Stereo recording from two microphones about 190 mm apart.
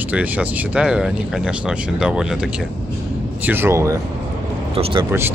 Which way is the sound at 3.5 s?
10° right (ahead or behind).